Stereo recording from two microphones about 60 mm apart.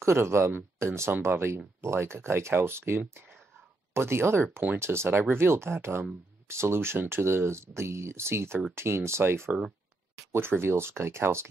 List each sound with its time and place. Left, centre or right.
0.0 s speech: right